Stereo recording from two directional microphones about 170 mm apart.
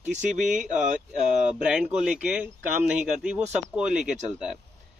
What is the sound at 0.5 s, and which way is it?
Speech, 50° right (ahead or behind).